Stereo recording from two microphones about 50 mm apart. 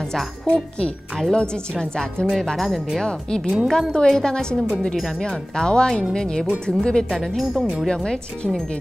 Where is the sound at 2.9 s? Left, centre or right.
Centre.